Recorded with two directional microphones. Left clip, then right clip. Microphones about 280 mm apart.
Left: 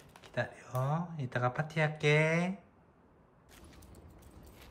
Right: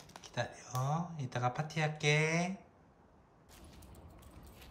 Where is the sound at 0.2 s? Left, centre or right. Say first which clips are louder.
Left 3 dB; centre.